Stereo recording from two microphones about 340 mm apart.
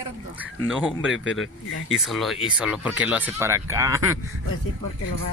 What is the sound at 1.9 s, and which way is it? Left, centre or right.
Speech, centre.